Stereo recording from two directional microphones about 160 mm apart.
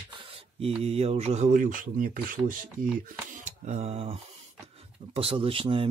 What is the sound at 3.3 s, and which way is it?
Speech, 50° right (ahead or behind).